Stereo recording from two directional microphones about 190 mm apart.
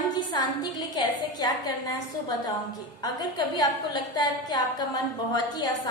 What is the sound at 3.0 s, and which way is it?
A woman's voice, 20° left (ahead or behind).